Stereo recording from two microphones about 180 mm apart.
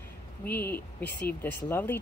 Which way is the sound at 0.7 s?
65° left (ahead or behind).